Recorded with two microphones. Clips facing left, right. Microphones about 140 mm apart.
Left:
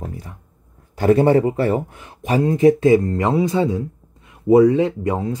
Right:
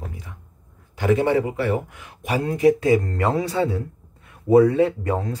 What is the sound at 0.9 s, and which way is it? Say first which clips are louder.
Speech: left 5 dB; 35° left (ahead or behind).